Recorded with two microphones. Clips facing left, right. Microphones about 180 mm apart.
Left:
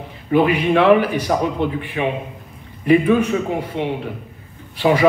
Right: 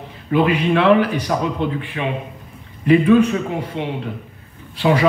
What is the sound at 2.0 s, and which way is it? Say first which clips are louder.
Speech: left 2 dB; 20° left (ahead or behind).